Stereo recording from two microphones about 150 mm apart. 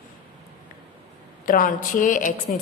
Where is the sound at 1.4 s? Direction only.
70° left (ahead or behind).